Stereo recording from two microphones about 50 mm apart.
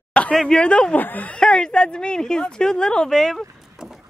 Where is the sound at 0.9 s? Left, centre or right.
Left.